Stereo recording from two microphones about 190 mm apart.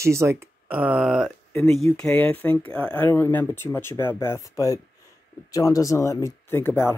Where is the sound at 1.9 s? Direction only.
5° left (ahead or behind).